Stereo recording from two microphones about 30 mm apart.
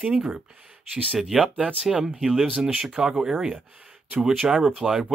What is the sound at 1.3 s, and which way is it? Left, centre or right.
Speech, centre.